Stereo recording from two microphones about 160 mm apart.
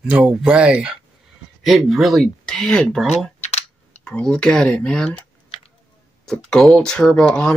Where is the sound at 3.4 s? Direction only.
45° left (ahead or behind).